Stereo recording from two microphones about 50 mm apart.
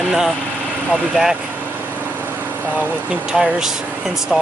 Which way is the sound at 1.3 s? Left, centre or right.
Right.